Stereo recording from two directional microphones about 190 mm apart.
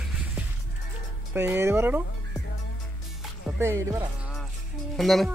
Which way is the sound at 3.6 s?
15° right (ahead or behind).